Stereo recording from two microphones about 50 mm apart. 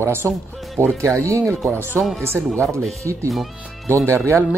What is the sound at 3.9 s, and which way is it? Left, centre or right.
Speech, right.